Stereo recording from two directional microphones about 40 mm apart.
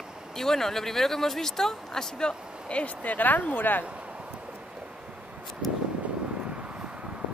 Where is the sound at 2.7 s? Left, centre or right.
Left.